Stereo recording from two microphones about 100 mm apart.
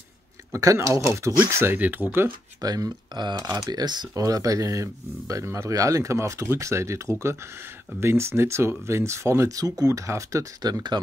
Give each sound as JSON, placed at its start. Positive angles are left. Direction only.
{"t": 0.5, "sound": "speech", "side_deg": -30}
{"t": 2.6, "sound": "speech", "side_deg": -40}